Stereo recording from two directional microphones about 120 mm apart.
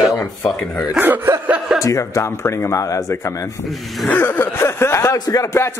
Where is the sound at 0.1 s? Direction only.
20° left (ahead or behind).